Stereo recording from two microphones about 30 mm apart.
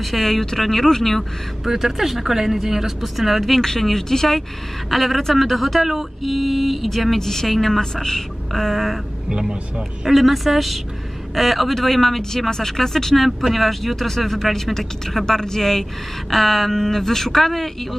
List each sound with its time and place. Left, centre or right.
0.0 s speech: centre
1.6 s speech: centre
3.0 s speech: centre
4.9 s speech: centre
7.2 s speech: centre
7.8 s speech: centre
8.5 s speech: centre
10.0 s speech: centre
13.5 s speech: centre